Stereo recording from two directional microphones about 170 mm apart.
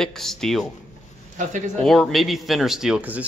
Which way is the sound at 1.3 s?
45° right (ahead or behind).